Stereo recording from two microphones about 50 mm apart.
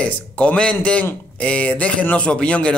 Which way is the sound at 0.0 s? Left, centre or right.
Left.